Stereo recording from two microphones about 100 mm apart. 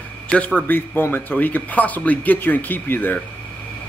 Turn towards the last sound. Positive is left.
turn(degrees=20)  # may be behind; listen again after turning